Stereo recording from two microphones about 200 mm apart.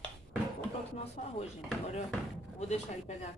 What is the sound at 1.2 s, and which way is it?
Speech, 35° left (ahead or behind).